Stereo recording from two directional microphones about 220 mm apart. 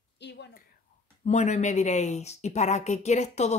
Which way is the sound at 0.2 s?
50° left (ahead or behind).